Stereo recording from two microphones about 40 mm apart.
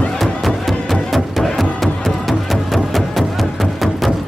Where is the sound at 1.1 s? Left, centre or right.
Centre.